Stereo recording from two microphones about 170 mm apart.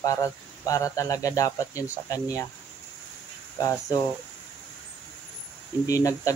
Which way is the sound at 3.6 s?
20° left (ahead or behind).